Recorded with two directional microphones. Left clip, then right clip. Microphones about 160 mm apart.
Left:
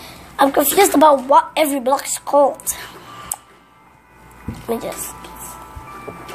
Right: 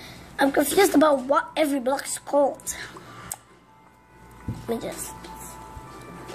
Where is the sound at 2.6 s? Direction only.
25° right (ahead or behind).